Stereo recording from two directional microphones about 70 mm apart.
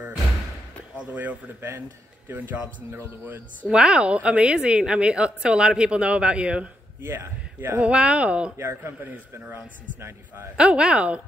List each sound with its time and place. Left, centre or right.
0.9 s speech: right
3.6 s a woman's voice: centre
7.1 s a man's voice: right
7.8 s a woman's voice: centre
8.5 s a man's voice: right
10.5 s a woman's voice: centre